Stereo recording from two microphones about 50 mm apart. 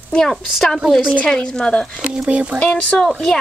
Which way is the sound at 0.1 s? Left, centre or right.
Centre.